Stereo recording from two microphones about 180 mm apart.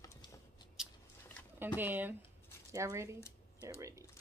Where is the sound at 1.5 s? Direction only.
10° right (ahead or behind).